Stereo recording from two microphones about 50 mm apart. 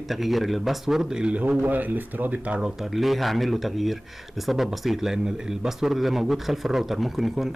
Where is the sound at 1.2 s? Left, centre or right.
Right.